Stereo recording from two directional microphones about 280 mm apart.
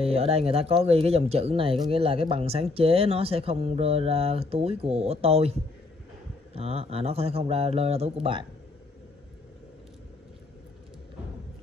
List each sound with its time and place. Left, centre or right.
0.0 s speech: right